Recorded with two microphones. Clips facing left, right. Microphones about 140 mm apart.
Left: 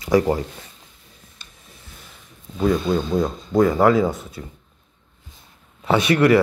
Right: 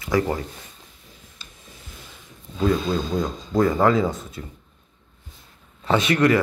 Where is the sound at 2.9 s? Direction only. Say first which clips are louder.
Left 3 dB; 15° left (ahead or behind).